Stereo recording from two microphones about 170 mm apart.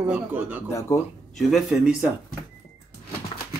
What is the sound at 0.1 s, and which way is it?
Speech, 10° right (ahead or behind).